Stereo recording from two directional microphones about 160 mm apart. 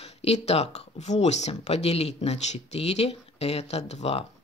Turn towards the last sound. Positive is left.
turn(degrees=40)  # may be behind; listen again after turning